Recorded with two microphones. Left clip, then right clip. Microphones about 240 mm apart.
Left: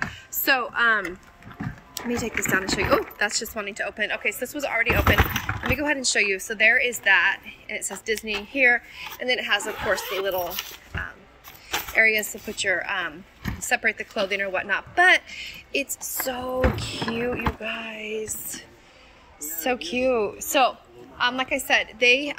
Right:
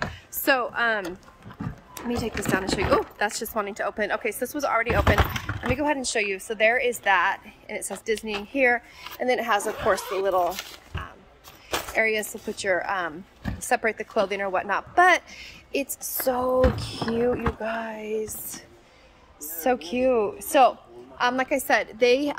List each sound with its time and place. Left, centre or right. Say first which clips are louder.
0.5 s a woman's voice: left 2 dB; centre